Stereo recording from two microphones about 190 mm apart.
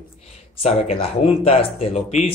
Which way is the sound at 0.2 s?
35° left (ahead or behind).